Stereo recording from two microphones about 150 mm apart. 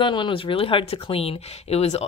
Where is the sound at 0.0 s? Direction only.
30° left (ahead or behind).